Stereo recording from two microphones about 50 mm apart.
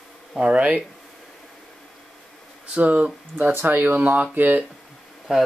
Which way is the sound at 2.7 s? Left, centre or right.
Right.